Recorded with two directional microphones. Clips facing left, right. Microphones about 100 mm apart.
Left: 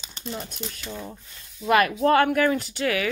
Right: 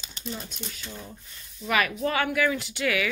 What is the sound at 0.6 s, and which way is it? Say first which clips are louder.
Speech: left 4 dB; 90° left.